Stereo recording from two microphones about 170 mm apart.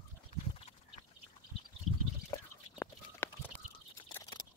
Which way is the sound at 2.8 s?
10° left (ahead or behind).